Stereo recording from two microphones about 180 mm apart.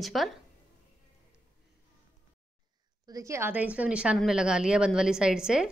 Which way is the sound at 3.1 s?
15° right (ahead or behind).